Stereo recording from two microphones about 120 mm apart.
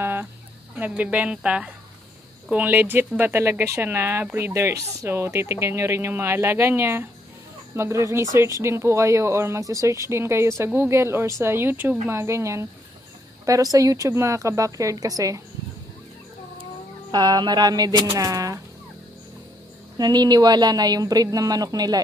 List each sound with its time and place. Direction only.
0.0 s a sound: 15° right (ahead or behind)
0.7 s speech: 10° right (ahead or behind); by 15.4 s 30° right (ahead or behind)
17.1 s a woman's voice: 35° right (ahead or behind)
20.0 s a woman's voice: 35° right (ahead or behind)